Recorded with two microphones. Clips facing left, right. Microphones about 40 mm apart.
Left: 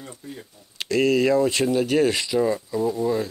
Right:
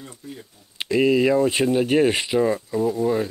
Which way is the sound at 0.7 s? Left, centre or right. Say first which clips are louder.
Right 1 dB; centre.